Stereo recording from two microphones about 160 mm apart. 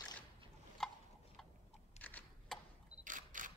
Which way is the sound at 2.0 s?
10° left (ahead or behind).